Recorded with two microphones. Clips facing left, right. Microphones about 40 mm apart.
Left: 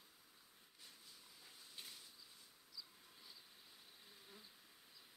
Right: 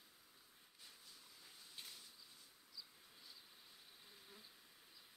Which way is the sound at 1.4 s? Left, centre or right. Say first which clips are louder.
Even; centre.